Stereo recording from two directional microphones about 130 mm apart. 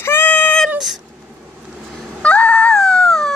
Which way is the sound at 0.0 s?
15° left (ahead or behind).